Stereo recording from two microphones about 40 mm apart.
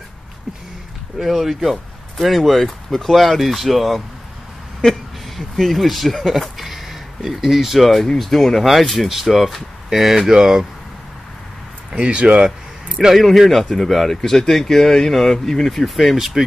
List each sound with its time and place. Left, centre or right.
1.2 s speech: centre
5.6 s speech: centre
6.6 s a sound: centre
7.9 s speech: centre
10.3 s speech: centre
11.9 s speech: right
13.1 s speech: centre
14.1 s speech: centre